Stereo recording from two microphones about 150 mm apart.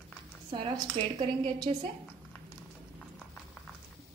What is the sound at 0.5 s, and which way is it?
A woman's voice, 35° right (ahead or behind).